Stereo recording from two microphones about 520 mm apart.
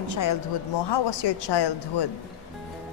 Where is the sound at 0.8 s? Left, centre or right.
Left.